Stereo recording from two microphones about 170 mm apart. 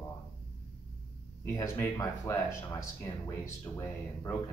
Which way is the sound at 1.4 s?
15° left (ahead or behind).